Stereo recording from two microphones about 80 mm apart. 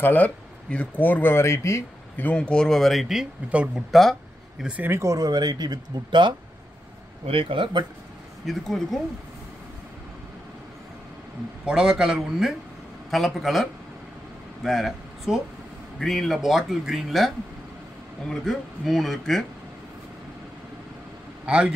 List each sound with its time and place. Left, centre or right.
0.0 s speech: left
2.1 s speech: centre
4.8 s speech: right
5.1 s speech: right
7.4 s speech: right
8.5 s speech: centre
11.6 s a man's voice: centre
18.3 s speech: centre
21.5 s a man's voice: centre